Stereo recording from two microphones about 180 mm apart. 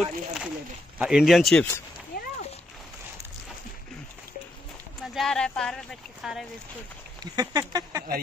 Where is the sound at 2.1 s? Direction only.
60° left (ahead or behind).